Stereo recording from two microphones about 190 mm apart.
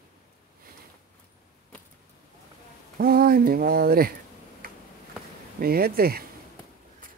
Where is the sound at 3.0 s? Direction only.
50° right (ahead or behind).